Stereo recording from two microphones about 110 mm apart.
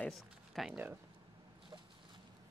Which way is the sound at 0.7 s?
20° right (ahead or behind).